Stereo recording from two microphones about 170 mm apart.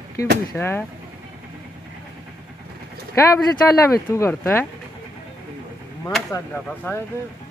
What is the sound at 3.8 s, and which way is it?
Speech, 15° left (ahead or behind).